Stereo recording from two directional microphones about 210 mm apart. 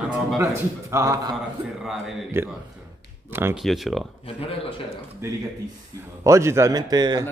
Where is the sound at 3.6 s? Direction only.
Centre (ahead or behind).